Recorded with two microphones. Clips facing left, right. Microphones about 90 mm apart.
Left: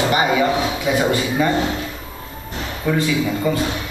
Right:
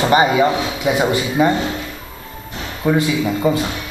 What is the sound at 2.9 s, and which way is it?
Speech, 20° right (ahead or behind).